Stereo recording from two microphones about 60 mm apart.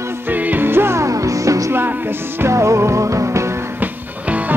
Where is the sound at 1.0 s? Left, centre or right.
Right.